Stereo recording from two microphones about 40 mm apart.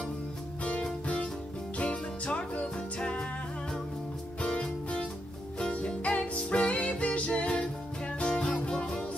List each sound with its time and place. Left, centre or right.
1.0 s music: left
5.6 s music: left